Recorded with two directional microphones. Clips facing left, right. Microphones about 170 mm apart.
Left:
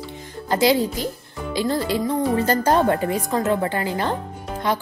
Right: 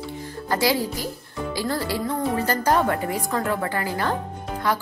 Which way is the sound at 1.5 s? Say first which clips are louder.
Left 4 dB; 20° left (ahead or behind).